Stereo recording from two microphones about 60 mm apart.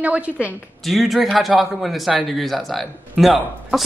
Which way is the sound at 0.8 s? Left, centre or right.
Centre.